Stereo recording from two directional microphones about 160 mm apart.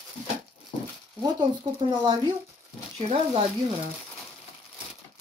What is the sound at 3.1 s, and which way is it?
Speech, 40° right (ahead or behind).